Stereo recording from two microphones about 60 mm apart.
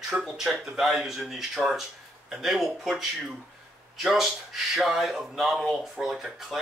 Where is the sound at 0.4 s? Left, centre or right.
Centre.